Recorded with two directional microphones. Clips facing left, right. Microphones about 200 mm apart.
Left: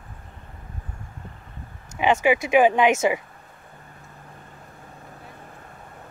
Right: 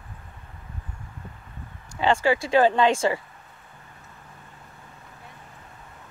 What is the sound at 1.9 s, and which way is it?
Speech, 20° left (ahead or behind).